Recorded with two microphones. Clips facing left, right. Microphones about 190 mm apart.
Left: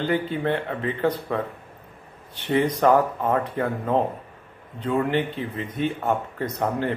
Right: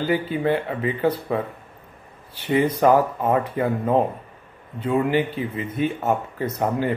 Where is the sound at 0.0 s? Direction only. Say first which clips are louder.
Right 2 dB; 5° right (ahead or behind).